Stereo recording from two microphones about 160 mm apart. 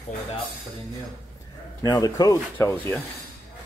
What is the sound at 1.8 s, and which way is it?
Speech, 25° left (ahead or behind).